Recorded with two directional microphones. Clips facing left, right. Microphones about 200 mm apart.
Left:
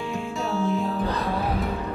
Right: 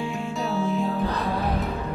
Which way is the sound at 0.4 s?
Centre (ahead or behind).